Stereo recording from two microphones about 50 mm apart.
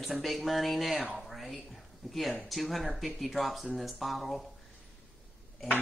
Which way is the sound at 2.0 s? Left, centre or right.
Centre.